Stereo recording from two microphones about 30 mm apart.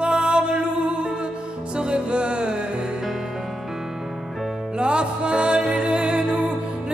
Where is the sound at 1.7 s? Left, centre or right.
Right.